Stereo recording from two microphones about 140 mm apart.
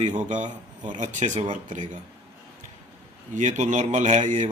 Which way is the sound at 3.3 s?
60° right (ahead or behind).